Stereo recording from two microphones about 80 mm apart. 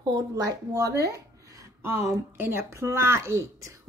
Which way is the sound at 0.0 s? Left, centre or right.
Right.